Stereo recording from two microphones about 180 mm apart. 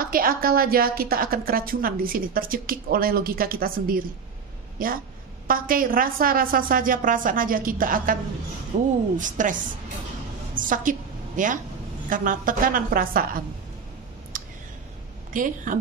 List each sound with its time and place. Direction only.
0.0 s a woman's voice: 50° right (ahead or behind)
8.7 s a woman's voice: 40° right (ahead or behind)
14.3 s clicking: 50° right (ahead or behind)
15.3 s a woman's voice: 45° right (ahead or behind)